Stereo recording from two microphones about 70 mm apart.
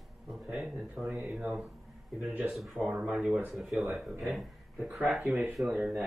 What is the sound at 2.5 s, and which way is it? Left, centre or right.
Speech, centre.